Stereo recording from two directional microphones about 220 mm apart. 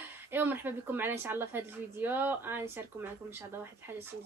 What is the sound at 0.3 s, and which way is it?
A woman's voice, 10° right (ahead or behind).